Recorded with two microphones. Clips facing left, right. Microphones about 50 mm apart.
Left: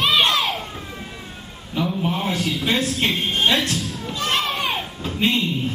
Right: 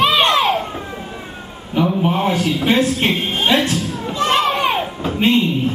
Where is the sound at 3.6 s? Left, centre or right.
Centre.